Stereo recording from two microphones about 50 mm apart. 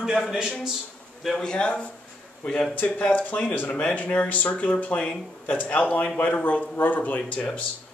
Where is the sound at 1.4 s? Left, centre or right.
Centre.